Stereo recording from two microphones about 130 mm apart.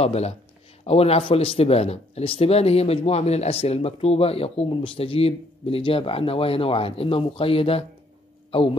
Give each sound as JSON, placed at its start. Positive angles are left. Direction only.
{"t": 0.0, "sound": "speech", "side_deg": 55}